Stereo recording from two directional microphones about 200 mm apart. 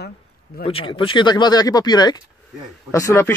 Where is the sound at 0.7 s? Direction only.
25° left (ahead or behind).